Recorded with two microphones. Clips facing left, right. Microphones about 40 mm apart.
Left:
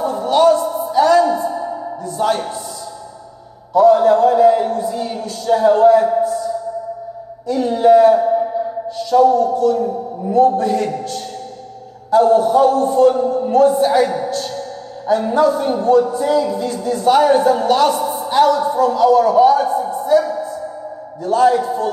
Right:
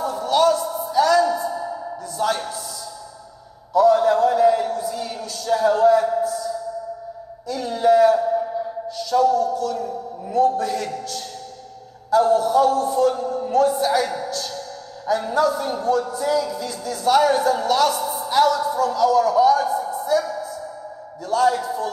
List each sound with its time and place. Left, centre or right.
0.0 s music: left
3.7 s a man's voice: left
18.5 s a sound: left
21.2 s a man's voice: left